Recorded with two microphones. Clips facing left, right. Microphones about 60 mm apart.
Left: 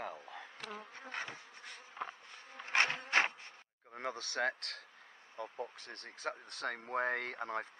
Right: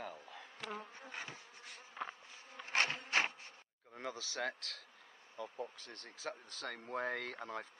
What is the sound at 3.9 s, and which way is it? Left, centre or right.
Speech, left.